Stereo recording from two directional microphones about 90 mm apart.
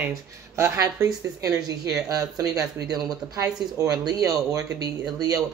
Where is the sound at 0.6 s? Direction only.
35° right (ahead or behind).